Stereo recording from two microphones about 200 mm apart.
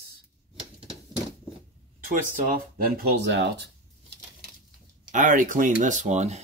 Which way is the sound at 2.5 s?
50° right (ahead or behind).